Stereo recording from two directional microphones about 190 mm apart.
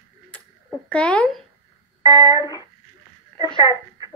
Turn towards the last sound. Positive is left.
turn(degrees=25)  # may be behind; listen again after turning